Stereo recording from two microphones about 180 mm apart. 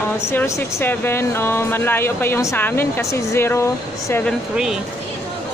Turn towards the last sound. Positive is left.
turn(degrees=0)  # may be behind; listen again after turning